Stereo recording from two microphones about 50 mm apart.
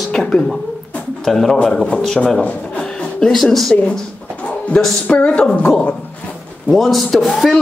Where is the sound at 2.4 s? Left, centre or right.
Left.